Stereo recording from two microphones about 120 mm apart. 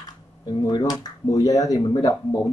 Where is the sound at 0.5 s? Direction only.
35° left (ahead or behind).